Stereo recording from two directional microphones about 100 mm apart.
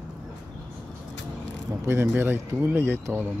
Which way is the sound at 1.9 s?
25° right (ahead or behind).